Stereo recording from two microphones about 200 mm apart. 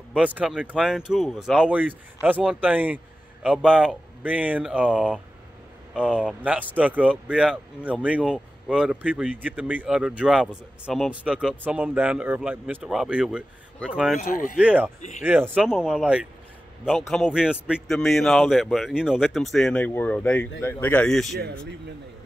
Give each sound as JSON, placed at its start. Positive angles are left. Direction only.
{"t": 0.1, "sound": "speech", "side_deg": -5}
{"t": 14.2, "sound": "speech", "side_deg": 40}
{"t": 14.6, "sound": "speech", "side_deg": -5}
{"t": 15.0, "sound": "speech", "side_deg": 35}
{"t": 15.2, "sound": "speech", "side_deg": -10}